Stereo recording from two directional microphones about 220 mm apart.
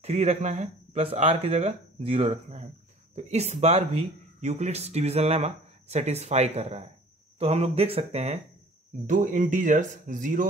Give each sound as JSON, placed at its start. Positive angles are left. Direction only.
{"t": 0.0, "sound": "speech", "side_deg": -30}